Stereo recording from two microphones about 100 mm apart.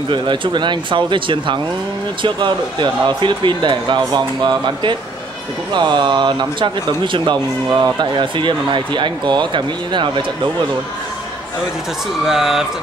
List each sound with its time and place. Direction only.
0.1 s speech: 50° right (ahead or behind)
12.3 s speech: 5° right (ahead or behind)